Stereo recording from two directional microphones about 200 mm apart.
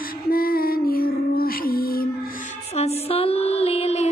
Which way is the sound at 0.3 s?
45° left (ahead or behind).